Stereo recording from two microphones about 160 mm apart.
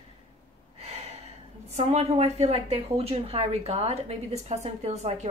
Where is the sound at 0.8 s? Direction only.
40° right (ahead or behind).